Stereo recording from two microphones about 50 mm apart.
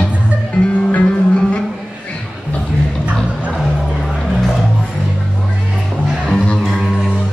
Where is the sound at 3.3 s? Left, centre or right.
Right.